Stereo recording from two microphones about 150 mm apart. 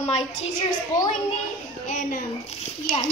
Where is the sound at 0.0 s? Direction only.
50° left (ahead or behind).